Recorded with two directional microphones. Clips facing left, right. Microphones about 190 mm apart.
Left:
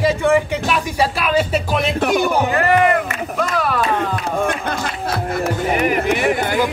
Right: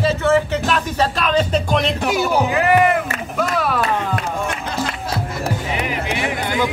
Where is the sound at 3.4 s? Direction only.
Centre (ahead or behind).